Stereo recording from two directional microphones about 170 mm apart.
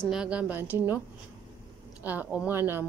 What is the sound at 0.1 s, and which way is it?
Speech, 5° right (ahead or behind).